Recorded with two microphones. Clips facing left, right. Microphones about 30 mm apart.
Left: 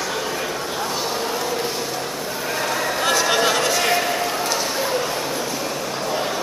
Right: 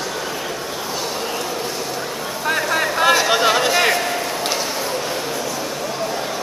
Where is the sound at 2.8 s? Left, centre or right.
Centre.